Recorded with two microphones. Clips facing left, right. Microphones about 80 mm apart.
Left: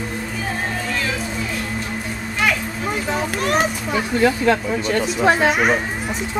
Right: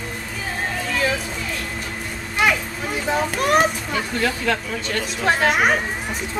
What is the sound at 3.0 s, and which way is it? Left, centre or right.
Speech, centre.